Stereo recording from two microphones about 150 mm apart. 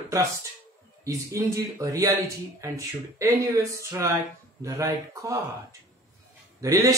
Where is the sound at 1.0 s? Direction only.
20° right (ahead or behind).